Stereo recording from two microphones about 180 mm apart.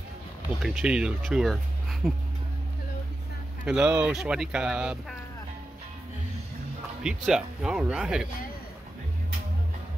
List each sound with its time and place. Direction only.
0.6 s speech: centre (ahead or behind)
3.6 s speech: 5° right (ahead or behind)
7.0 s speech: 5° right (ahead or behind)